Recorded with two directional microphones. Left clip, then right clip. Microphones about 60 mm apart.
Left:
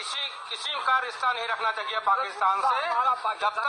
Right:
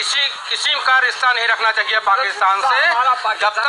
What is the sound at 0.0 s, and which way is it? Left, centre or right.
A man's voice, left.